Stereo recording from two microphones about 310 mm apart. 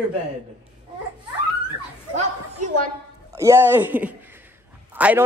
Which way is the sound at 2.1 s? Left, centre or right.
Right.